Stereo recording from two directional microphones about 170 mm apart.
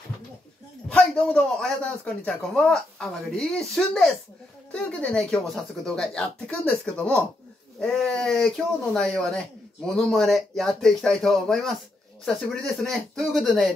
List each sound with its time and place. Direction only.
0.8 s a man's voice: 5° left (ahead or behind)